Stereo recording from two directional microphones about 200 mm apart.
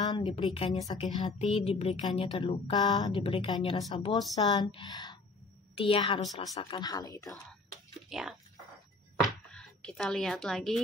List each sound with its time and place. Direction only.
0.0 s a woman's voice: 25° left (ahead or behind)
8.1 s speech: centre (ahead or behind)
9.5 s speech: 5° left (ahead or behind)